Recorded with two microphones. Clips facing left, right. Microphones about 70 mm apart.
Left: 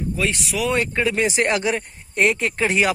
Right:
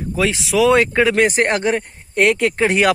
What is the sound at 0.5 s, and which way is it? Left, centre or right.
Speech, right.